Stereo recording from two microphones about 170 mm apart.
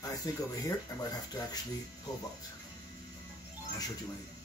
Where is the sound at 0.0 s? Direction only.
20° left (ahead or behind).